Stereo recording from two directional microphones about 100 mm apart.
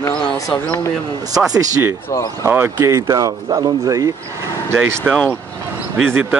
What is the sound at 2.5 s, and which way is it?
Speech, 20° right (ahead or behind).